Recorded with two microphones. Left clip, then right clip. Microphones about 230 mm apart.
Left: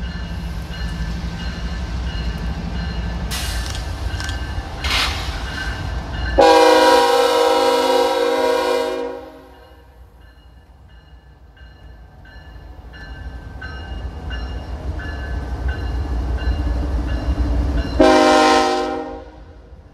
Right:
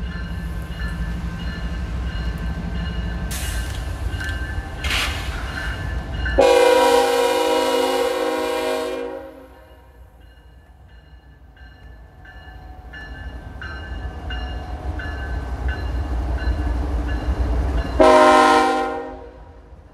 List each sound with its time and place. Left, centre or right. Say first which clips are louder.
4.8 s a sound: left 3 dB; centre
6.3 s train: left 3 dB; centre
17.9 s train: right 1 dB; right